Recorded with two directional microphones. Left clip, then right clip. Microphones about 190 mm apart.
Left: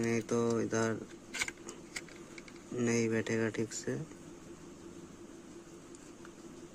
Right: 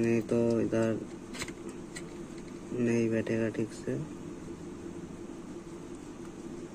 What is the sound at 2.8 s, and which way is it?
Speech, 45° left (ahead or behind).